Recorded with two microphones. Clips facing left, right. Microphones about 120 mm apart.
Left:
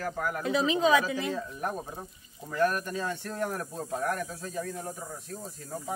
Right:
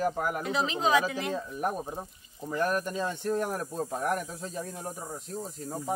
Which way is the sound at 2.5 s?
20° right (ahead or behind).